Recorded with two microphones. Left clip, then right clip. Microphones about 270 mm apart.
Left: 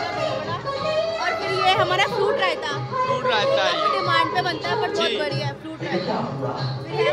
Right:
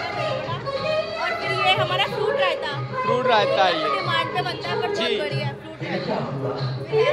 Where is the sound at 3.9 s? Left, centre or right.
Left.